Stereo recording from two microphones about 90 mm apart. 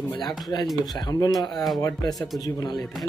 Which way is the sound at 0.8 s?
55° left (ahead or behind).